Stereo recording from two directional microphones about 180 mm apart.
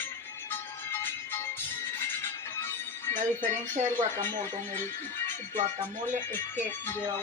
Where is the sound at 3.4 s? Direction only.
40° right (ahead or behind).